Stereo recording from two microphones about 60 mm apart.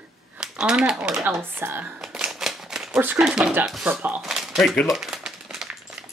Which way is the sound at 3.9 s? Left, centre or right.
Right.